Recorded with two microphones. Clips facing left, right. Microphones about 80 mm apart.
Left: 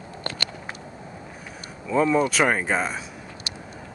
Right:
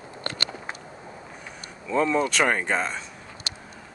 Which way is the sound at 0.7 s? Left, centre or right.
Right.